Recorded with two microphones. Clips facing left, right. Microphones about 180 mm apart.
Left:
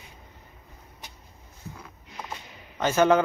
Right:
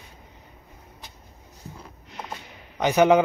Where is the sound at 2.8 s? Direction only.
15° right (ahead or behind).